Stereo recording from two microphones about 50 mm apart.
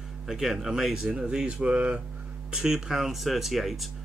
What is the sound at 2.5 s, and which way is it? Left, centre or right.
Speech, centre.